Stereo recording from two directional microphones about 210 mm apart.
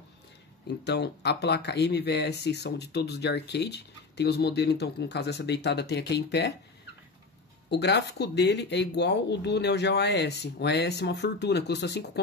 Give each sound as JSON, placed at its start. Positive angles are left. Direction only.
{"t": 0.8, "sound": "speech", "side_deg": 55}
{"t": 7.7, "sound": "speech", "side_deg": 55}